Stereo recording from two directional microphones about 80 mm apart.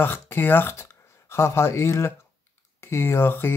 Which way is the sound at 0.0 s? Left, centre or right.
Left.